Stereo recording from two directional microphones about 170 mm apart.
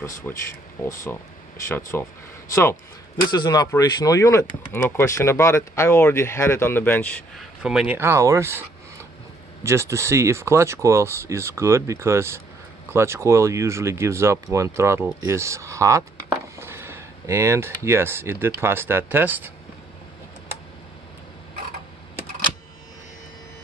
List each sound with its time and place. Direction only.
0.3 s speech: 10° left (ahead or behind)
1.8 s speech: 15° left (ahead or behind)
7.6 s speech: 5° right (ahead or behind)